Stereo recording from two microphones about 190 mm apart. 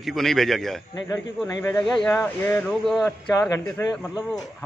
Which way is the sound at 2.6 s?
Centre (ahead or behind).